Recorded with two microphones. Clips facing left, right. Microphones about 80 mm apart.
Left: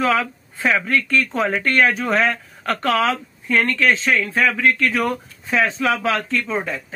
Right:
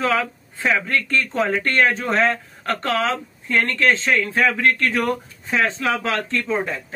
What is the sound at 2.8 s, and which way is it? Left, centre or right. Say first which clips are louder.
Speech: left 3 dB; right.